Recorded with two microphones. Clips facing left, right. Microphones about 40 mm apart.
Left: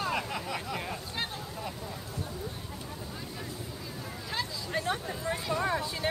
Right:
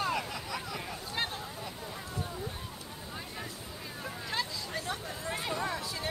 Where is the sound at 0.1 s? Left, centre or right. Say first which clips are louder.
Left 2 dB; centre.